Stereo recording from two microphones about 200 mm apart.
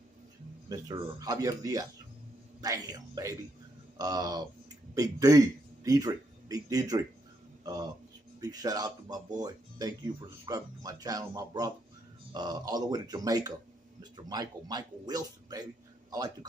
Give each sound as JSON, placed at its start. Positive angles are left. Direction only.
{"t": 0.7, "sound": "speech", "side_deg": -20}